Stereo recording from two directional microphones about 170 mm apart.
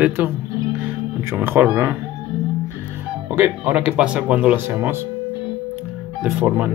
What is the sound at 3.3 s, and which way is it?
Speech, 10° right (ahead or behind).